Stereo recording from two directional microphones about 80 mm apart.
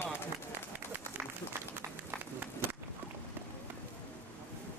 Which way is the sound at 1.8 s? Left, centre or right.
Right.